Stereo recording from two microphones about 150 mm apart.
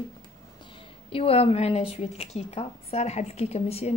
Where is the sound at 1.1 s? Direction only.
40° left (ahead or behind).